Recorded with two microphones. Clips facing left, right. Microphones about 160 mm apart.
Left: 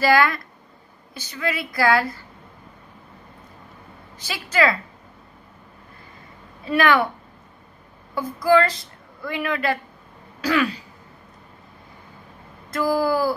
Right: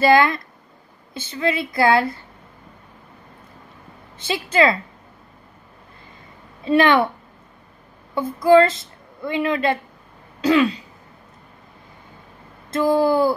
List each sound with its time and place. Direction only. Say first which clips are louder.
0.0 s a woman's voice: right 3 dB; 25° right (ahead or behind)
4.2 s a woman's voice: right 3 dB; 25° right (ahead or behind)
6.6 s a woman's voice: right 3 dB; 25° right (ahead or behind)
8.1 s a woman's voice: right 4 dB; 25° right (ahead or behind)
10.4 s throat clearing: right 5 dB; 25° right (ahead or behind)
12.7 s a woman's voice: right 4 dB; 25° right (ahead or behind)